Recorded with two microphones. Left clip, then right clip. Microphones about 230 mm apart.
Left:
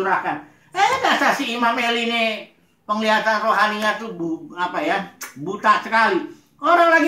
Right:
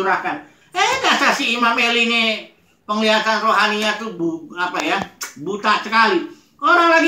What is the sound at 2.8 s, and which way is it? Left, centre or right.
Speech, centre.